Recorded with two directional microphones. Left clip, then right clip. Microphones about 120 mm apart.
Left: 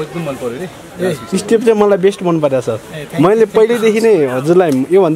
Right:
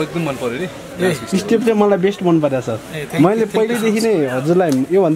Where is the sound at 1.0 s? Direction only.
5° right (ahead or behind).